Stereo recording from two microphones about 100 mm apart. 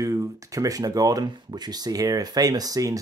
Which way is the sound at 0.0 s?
35° right (ahead or behind).